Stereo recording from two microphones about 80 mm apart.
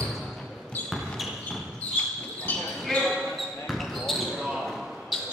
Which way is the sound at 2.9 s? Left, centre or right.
Centre.